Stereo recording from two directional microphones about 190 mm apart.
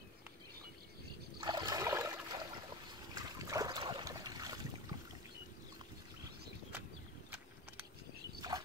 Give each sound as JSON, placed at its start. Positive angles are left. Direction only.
{"t": 1.4, "sound": "boat", "side_deg": -20}
{"t": 3.2, "sound": "trickle", "side_deg": -20}
{"t": 8.4, "sound": "a sound", "side_deg": -20}